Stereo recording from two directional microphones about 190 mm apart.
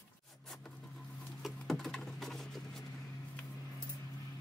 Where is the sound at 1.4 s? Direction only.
Centre (ahead or behind).